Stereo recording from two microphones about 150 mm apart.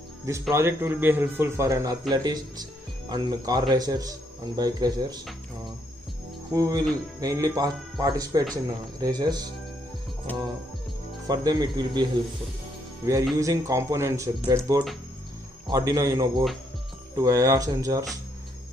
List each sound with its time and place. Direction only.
0.2 s speech: 20° right (ahead or behind)
6.5 s speech: 25° right (ahead or behind)
10.3 s music: 10° left (ahead or behind)
11.2 s speech: 25° right (ahead or behind)
13.4 s speech: 20° right (ahead or behind)